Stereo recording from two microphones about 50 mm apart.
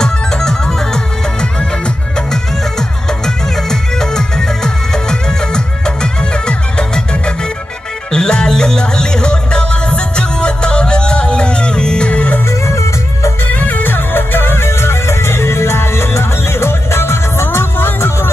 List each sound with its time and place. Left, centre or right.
0.0 s music: centre
3.3 s music: centre; by 12.4 s left
12.6 s music: left
13.5 s music: left